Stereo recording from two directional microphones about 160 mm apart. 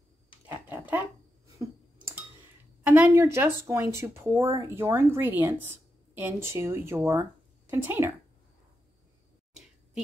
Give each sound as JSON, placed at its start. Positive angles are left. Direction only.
{"t": 0.5, "sound": "speech", "side_deg": -10}
{"t": 2.8, "sound": "speech", "side_deg": -10}